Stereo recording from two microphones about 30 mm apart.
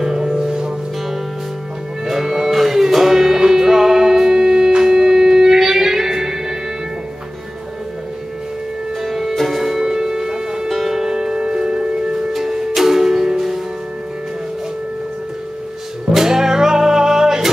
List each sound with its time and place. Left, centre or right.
0.0 s music: centre
2.0 s music: centre
9.0 s music: centre; by 12.3 s right
12.3 s music: centre
16.1 s music: centre